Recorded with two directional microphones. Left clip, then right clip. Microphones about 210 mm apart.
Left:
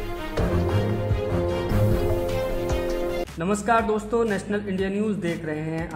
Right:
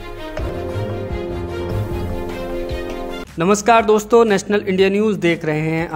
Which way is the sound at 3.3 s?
30° right (ahead or behind).